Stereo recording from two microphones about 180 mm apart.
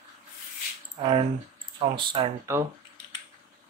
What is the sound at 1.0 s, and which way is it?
Speech, 30° right (ahead or behind).